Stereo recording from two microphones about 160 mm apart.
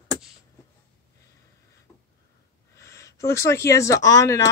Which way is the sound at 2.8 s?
20° left (ahead or behind).